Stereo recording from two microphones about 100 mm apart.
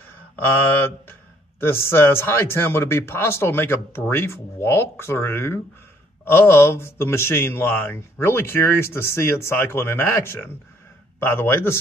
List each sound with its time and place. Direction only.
1.6 s speech: 25° left (ahead or behind)